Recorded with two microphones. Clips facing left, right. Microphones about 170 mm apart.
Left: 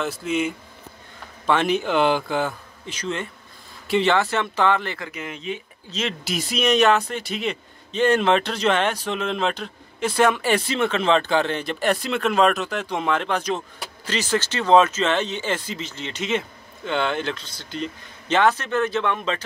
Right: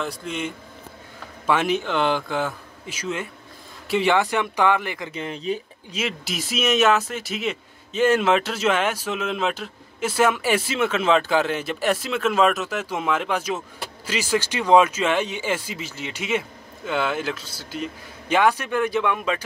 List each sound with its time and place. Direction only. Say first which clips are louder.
0.0 s speech: left 4 dB; 5° left (ahead or behind)
1.4 s a man's voice: left 1 dB; 5° right (ahead or behind)
1.8 s a man's voice: left 3 dB; 5° left (ahead or behind)
4.1 s speech: even; 15° right (ahead or behind)
5.1 s speech: right 4 dB; 30° right (ahead or behind)
5.9 s speech: left 1 dB; 5° right (ahead or behind)